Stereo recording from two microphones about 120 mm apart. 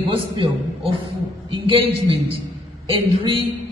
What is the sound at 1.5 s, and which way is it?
A man's voice, 45° right (ahead or behind).